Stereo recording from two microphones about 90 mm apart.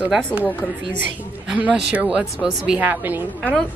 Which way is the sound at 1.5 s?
15° right (ahead or behind).